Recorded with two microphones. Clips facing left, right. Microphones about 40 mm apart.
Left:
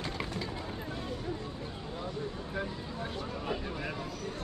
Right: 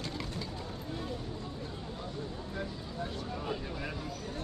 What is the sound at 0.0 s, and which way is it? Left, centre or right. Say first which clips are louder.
Vehicle: left 2 dB; left.